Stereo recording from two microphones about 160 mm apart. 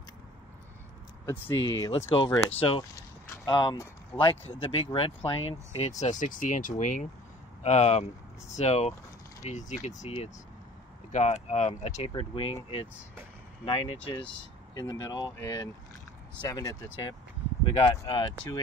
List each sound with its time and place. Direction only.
1.2 s speech: 20° left (ahead or behind)
3.4 s speech: 30° left (ahead or behind); by 12.1 s 45° left (ahead or behind)
12.1 s speech: 35° left (ahead or behind)
13.7 s speech: 35° left (ahead or behind)
14.7 s speech: 25° left (ahead or behind)